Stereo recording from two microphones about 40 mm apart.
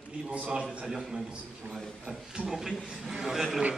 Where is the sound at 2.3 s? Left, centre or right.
Centre.